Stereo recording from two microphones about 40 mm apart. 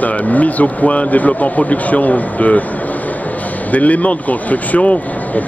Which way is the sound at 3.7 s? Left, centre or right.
Left.